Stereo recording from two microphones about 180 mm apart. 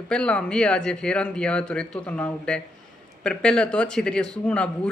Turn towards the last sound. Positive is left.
turn(degrees=5)  # may be behind; listen again after turning